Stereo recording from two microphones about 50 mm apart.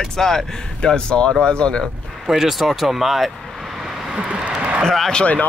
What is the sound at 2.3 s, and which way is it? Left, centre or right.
Speech, centre.